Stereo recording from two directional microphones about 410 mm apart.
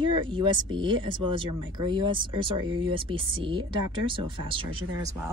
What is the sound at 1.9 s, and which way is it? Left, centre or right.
Speech, centre.